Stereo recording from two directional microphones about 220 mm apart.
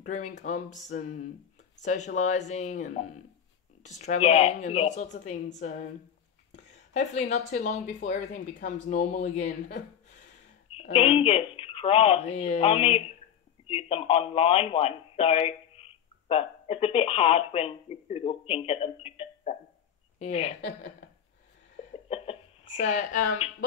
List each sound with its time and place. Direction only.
0.0 s speech: 35° left (ahead or behind)
7.0 s speech: 30° left (ahead or behind)
10.7 s a woman's voice: 25° left (ahead or behind)
22.1 s hiccup: 25° left (ahead or behind)